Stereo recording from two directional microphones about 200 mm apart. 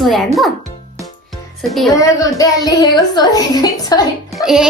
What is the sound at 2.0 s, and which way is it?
A woman's voice, 15° left (ahead or behind).